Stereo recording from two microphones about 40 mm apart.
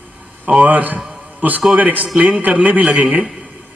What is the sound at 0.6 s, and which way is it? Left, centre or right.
A man's voice, right.